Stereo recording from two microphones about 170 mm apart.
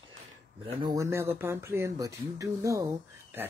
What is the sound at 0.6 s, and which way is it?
Speech, 30° right (ahead or behind).